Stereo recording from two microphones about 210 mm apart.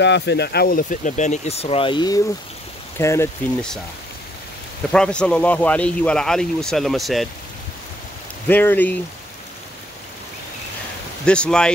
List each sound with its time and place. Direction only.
0.0 s speech: 55° left (ahead or behind); by 3.3 s 15° left (ahead or behind)
4.9 s speech: 5° left (ahead or behind)
8.5 s speech: 10° left (ahead or behind)
11.2 s speech: 5° left (ahead or behind)